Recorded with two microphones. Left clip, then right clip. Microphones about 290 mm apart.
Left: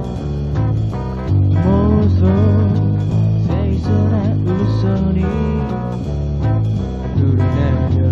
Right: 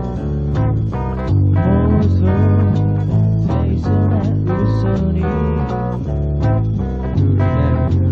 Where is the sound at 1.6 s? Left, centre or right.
Left.